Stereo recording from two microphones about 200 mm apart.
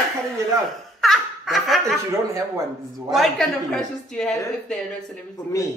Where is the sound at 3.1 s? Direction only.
Centre (ahead or behind).